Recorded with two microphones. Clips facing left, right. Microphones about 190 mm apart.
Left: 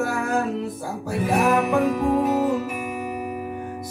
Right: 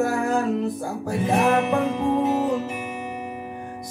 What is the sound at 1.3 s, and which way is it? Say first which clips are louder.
Music: even; 25° right (ahead or behind).